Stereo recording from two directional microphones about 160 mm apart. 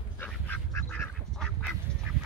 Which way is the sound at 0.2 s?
10° left (ahead or behind).